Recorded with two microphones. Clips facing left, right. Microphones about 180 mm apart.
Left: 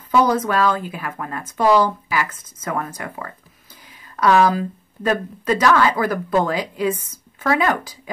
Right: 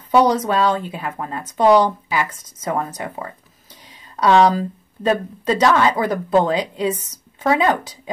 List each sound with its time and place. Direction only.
0.5 s speech: 25° right (ahead or behind)